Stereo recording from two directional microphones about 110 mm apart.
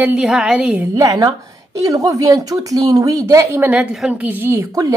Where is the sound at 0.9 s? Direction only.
35° right (ahead or behind).